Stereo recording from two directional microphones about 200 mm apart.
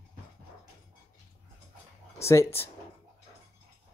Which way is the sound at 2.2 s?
15° left (ahead or behind).